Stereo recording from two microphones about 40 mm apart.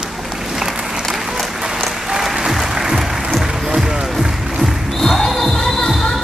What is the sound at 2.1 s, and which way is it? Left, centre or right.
Applause, centre.